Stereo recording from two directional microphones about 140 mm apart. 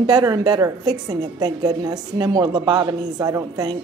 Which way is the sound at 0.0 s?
30° right (ahead or behind).